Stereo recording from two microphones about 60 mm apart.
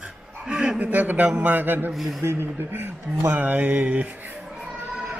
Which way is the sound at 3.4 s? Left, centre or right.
Right.